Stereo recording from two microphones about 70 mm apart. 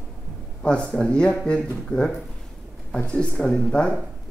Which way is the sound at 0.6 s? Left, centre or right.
Centre.